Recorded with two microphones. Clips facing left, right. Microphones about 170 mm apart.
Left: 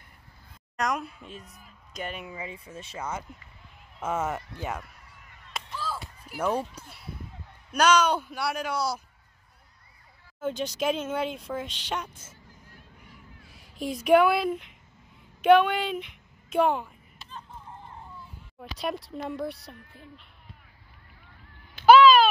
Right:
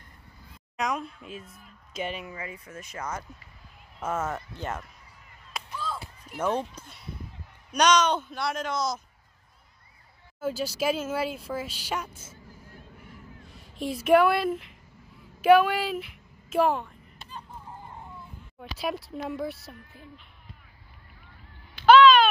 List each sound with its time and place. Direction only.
0.7 s speech: 5° left (ahead or behind)
2.4 s speech: 30° left (ahead or behind)
3.0 s speech: 10° left (ahead or behind)
4.4 s speech: centre (ahead or behind)
5.5 s a sound: 5° left (ahead or behind)
6.2 s speech: 10° left (ahead or behind)
10.4 s speech: 5° right (ahead or behind)
13.5 s a woman's voice: centre (ahead or behind)
17.3 s a sound: 10° right (ahead or behind)
18.6 s speech: centre (ahead or behind)
21.8 s cat: 5° left (ahead or behind)